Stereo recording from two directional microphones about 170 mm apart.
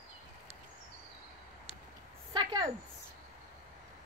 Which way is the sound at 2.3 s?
25° right (ahead or behind).